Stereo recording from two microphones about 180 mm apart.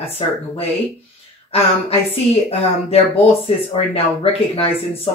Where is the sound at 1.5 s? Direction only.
30° left (ahead or behind).